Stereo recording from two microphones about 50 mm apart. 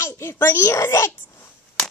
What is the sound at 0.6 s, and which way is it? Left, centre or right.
Speech, left.